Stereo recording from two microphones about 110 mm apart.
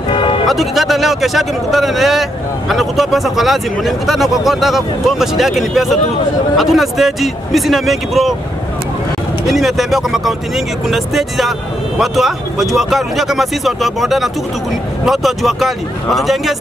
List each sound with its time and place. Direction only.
0.1 s music: 50° left (ahead or behind)
0.5 s speech: centre (ahead or behind)
9.5 s speech: centre (ahead or behind)